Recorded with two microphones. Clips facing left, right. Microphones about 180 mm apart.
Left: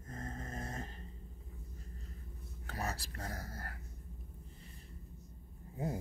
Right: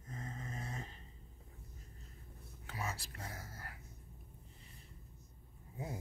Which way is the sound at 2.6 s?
40° left (ahead or behind).